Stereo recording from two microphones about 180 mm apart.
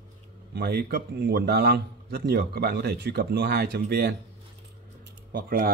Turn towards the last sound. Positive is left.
turn(degrees=-55)  # may be behind; listen again after turning